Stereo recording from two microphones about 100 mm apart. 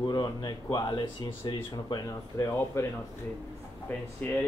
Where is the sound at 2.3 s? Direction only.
25° left (ahead or behind).